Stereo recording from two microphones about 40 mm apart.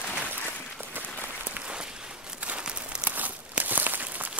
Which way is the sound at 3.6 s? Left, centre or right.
Right.